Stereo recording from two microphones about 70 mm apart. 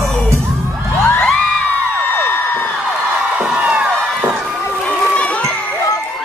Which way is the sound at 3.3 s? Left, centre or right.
Centre.